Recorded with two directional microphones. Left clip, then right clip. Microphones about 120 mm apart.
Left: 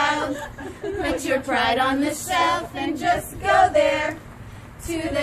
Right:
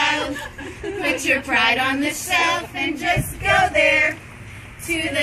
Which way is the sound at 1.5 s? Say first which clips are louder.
Right 1 dB; 25° left (ahead or behind).